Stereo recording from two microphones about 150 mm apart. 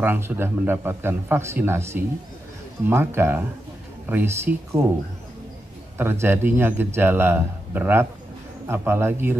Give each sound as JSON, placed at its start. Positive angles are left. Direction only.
{"t": 0.0, "sound": "a man's voice", "side_deg": -15}
{"t": 5.9, "sound": "a man's voice", "side_deg": -15}